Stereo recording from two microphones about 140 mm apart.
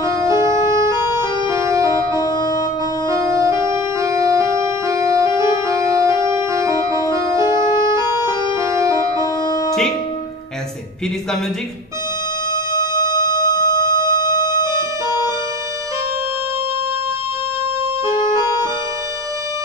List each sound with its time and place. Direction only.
0.0 s organ: 20° right (ahead or behind)
2.2 s music: 30° left (ahead or behind)
3.1 s organ: 20° right (ahead or behind)
8.5 s music: 20° right (ahead or behind)
12.7 s music: 30° left (ahead or behind)
18.4 s music: 20° right (ahead or behind)